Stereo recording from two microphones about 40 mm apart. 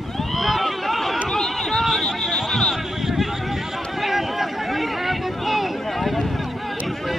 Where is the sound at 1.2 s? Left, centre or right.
Centre.